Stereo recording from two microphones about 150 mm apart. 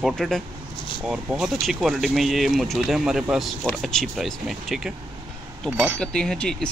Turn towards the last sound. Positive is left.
turn(degrees=5)  # may be behind; listen again after turning